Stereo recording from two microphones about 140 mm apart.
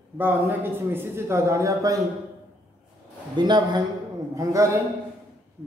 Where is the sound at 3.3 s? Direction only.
30° right (ahead or behind).